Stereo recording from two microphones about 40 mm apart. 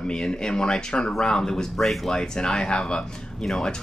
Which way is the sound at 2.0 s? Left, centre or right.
Centre.